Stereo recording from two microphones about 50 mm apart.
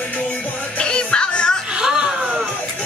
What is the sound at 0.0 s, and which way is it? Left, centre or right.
Music, left.